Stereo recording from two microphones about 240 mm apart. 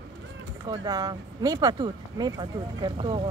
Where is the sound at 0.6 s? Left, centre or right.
Centre.